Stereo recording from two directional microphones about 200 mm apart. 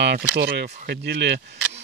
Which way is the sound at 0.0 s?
55° right (ahead or behind).